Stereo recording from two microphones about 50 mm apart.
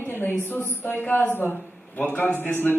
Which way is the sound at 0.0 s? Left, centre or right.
Left.